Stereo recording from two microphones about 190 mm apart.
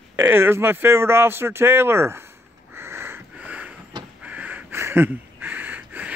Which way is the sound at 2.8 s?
10° right (ahead or behind).